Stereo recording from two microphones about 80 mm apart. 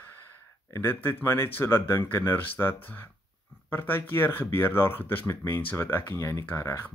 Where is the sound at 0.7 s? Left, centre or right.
Left.